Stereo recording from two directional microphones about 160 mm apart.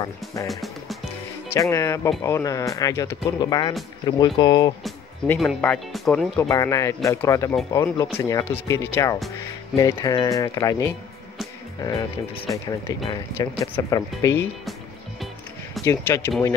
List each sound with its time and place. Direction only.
0.0 s speech: 20° left (ahead or behind)
0.5 s music: centre (ahead or behind)
1.5 s speech: 15° left (ahead or behind)
5.6 s speech: 5° left (ahead or behind)
6.5 s speech: 20° left (ahead or behind)
15.8 s speech: 15° left (ahead or behind)